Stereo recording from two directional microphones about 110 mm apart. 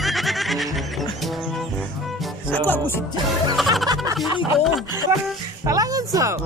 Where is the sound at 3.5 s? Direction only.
Centre (ahead or behind).